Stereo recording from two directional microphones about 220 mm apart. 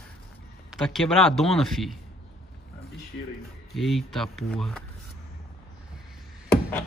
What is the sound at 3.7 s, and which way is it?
A man's voice, centre (ahead or behind).